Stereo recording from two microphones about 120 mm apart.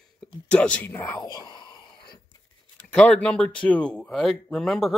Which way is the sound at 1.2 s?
35° left (ahead or behind).